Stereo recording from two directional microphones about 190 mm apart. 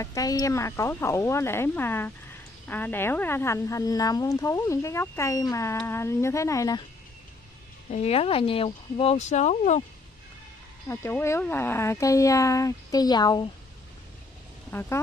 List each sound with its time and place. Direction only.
0.0 s speech: 20° left (ahead or behind)
7.9 s speech: 30° left (ahead or behind)
10.9 s speech: 10° left (ahead or behind)
14.7 s speech: 10° left (ahead or behind)